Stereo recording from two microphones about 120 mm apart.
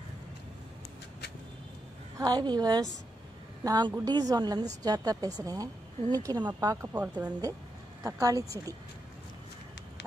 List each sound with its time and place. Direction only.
2.1 s a woman's voice: 35° right (ahead or behind)
6.9 s speech: 10° right (ahead or behind)
8.0 s speech: 30° right (ahead or behind)